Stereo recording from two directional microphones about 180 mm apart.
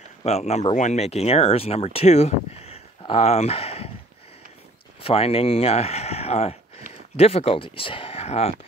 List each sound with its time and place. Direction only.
0.2 s speech: 35° left (ahead or behind)
5.0 s speech: 30° left (ahead or behind)